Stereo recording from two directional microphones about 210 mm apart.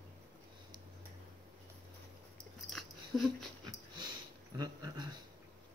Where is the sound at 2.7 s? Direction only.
Centre (ahead or behind).